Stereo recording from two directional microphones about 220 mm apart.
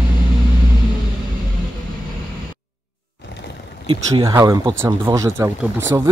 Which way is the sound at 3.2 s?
50° left (ahead or behind).